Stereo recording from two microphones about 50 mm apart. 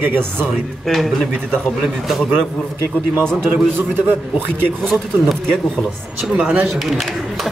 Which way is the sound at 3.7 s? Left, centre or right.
Right.